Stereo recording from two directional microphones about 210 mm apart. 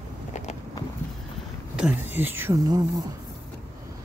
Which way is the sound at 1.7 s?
5° right (ahead or behind).